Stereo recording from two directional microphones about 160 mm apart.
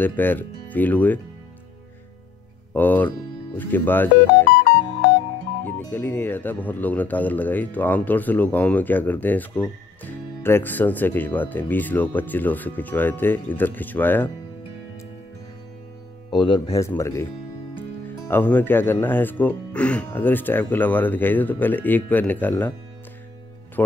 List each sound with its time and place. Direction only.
0.0 s speech: 10° left (ahead or behind)
2.7 s speech: 10° left (ahead or behind)
5.7 s speech: 10° left (ahead or behind)
16.3 s speech: 30° left (ahead or behind)
18.3 s speech: 10° left (ahead or behind)